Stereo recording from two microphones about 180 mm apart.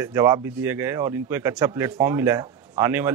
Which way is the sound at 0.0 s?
15° right (ahead or behind).